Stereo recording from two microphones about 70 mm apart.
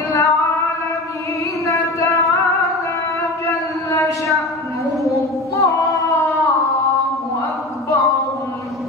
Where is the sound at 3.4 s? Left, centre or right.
Left.